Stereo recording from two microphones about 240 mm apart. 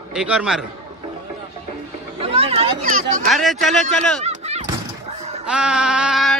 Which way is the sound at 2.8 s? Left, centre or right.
Right.